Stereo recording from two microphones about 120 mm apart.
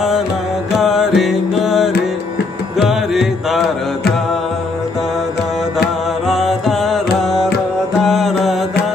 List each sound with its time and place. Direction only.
0.7 s music: centre (ahead or behind)
6.2 s music: centre (ahead or behind)